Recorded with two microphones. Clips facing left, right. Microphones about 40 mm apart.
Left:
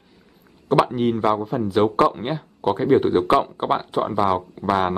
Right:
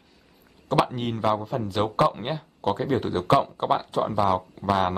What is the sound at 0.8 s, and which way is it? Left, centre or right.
Speech, centre.